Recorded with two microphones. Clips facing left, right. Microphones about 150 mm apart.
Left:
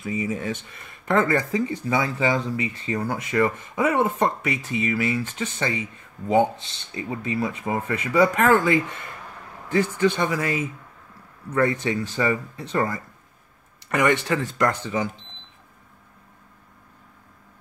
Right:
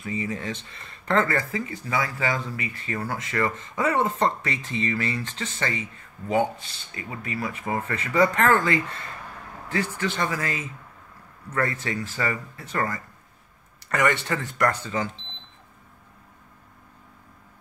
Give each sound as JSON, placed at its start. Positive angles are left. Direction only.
{"t": 0.0, "sound": "speech", "side_deg": 10}